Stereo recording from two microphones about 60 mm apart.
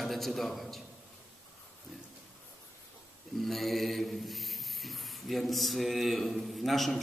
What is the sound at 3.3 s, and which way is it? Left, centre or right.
Rub, centre.